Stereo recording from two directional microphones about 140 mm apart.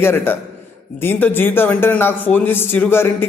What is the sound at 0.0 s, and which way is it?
Speech, 15° left (ahead or behind).